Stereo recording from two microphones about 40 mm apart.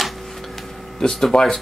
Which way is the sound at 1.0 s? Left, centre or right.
Centre.